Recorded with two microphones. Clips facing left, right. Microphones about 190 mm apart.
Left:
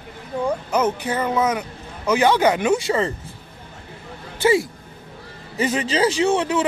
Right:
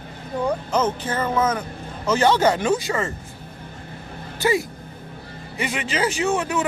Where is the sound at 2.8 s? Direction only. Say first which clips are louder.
Left 4 dB; 30° left (ahead or behind).